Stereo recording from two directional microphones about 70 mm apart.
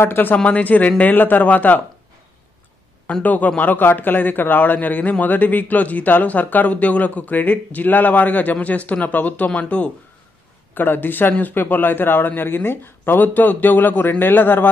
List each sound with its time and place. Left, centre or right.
0.0 s a man's voice: left
3.1 s a man's voice: left
10.7 s a man's voice: left